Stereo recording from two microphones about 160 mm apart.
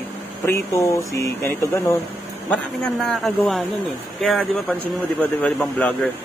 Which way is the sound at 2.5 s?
5° left (ahead or behind).